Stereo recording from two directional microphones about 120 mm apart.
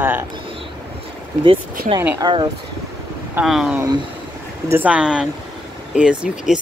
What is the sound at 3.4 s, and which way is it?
Speech, 5° right (ahead or behind).